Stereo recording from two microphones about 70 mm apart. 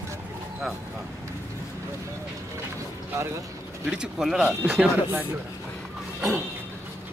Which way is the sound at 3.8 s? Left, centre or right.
Centre.